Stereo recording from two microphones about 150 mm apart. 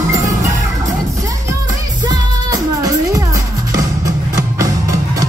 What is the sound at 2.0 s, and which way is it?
Music, 20° right (ahead or behind).